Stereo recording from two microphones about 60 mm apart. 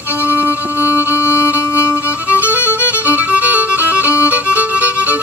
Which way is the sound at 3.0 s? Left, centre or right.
Right.